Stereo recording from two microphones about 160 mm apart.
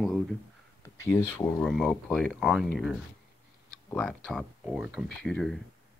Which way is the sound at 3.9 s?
5° left (ahead or behind).